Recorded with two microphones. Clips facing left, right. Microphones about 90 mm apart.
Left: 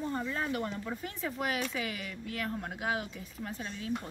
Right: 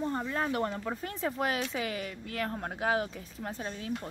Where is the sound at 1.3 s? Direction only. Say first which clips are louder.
Even; 30° right (ahead or behind).